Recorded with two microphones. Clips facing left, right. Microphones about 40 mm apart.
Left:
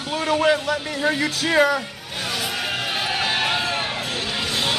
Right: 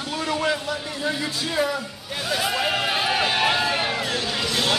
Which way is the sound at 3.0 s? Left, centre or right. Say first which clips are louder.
Even; centre.